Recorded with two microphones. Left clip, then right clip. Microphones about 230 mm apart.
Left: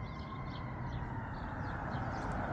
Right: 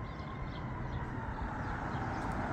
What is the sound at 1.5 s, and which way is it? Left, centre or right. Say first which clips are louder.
Vehicle: right 1 dB; right.